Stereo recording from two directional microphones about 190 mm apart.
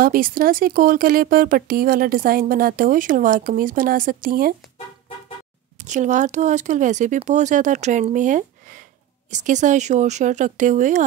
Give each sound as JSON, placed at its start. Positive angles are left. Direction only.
{"t": 0.0, "sound": "speech", "side_deg": -50}
{"t": 5.8, "sound": "speech", "side_deg": -40}